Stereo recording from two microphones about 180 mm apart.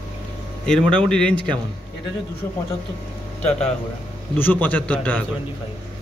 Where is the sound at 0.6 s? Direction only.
5° left (ahead or behind).